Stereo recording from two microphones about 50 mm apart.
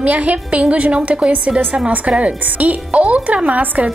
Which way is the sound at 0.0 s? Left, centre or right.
Right.